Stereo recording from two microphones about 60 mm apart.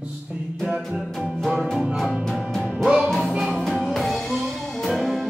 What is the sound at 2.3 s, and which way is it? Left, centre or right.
Music, centre.